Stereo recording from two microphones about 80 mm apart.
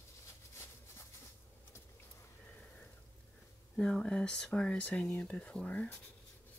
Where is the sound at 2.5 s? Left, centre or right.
Centre.